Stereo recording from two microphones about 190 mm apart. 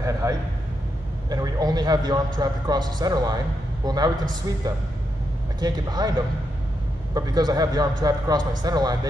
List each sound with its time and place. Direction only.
0.0 s a man's voice: 15° right (ahead or behind)
7.2 s a man's voice: 20° right (ahead or behind)